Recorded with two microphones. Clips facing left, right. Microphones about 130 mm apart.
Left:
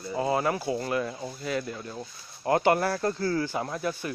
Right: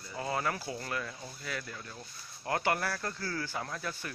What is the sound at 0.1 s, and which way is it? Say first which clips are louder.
Speech: left 8 dB; 20° left (ahead or behind).